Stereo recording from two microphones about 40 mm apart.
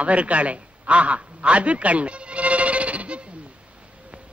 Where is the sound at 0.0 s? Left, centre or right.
Right.